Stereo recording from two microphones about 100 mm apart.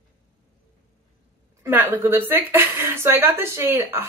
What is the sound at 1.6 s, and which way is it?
Speech, 20° right (ahead or behind).